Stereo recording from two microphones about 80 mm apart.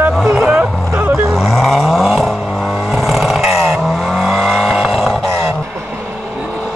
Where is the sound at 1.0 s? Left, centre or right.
Right.